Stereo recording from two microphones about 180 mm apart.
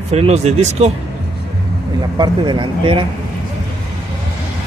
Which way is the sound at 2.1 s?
25° right (ahead or behind).